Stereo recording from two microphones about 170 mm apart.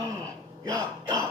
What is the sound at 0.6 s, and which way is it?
Throat clearing, 20° right (ahead or behind).